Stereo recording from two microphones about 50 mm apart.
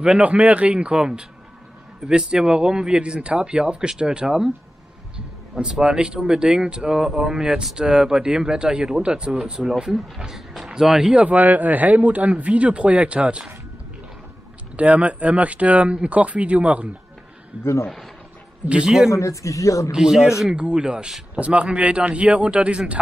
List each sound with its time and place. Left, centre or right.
0.2 s speech: right
10.2 s speech: centre
11.1 s speech: right
14.8 s speech: right
18.7 s speech: centre
19.0 s speech: left
19.9 s speech: centre